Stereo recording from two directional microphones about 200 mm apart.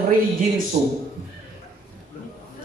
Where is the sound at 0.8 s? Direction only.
20° right (ahead or behind).